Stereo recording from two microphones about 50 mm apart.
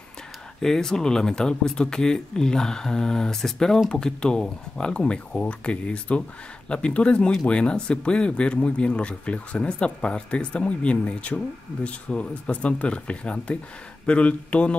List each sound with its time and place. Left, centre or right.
0.6 s speech: centre; by 14.8 s left